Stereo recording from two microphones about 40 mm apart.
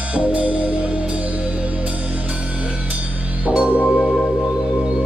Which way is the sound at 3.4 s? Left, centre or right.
Right.